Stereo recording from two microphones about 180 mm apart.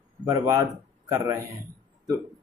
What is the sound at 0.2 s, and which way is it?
A man's voice, 20° right (ahead or behind).